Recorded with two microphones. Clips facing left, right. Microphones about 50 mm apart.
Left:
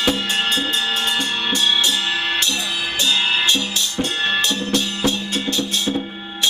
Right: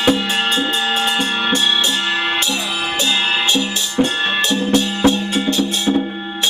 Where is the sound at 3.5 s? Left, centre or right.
Centre.